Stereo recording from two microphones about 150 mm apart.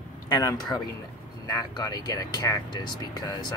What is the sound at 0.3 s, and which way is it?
Speech, 25° left (ahead or behind).